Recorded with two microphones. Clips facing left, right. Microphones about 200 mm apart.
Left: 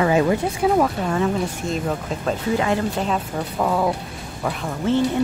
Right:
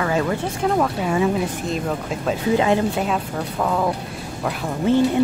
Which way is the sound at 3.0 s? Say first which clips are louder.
Even; 5° left (ahead or behind).